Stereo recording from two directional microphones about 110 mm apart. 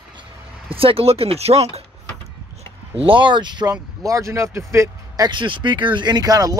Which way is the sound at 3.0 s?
50° right (ahead or behind).